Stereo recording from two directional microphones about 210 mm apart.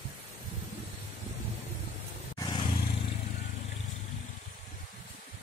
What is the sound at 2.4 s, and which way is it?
Vehicle, 20° left (ahead or behind).